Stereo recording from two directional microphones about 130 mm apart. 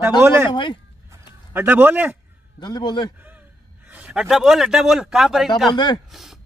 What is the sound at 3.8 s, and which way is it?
A man's voice, 10° right (ahead or behind).